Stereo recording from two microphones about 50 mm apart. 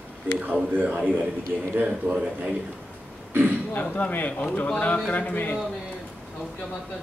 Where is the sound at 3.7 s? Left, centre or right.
Left.